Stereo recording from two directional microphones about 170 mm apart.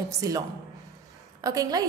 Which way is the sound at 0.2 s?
20° right (ahead or behind).